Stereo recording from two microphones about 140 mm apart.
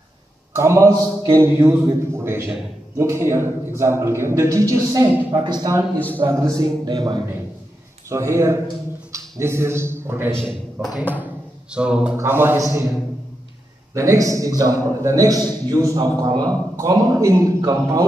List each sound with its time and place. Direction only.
0.5 s a man's voice: 20° right (ahead or behind)
13.9 s a man's voice: 20° right (ahead or behind)